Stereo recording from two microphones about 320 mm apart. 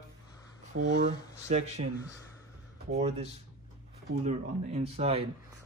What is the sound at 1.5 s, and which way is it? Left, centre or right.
Speech, centre.